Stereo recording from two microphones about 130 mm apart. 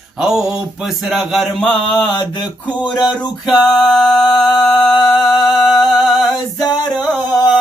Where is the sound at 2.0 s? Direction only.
35° left (ahead or behind).